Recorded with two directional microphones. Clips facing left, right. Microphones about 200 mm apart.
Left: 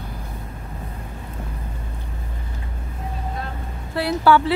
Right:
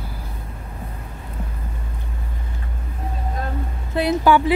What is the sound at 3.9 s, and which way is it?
Speech, 20° right (ahead or behind).